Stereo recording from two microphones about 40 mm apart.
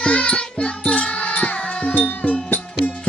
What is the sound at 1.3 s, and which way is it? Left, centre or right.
Music, left.